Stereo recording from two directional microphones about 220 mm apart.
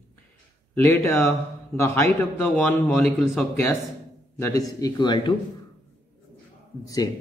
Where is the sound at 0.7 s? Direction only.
10° left (ahead or behind).